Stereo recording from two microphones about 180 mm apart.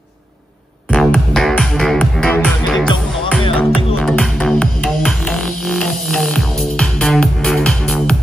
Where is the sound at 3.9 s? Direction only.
Centre (ahead or behind).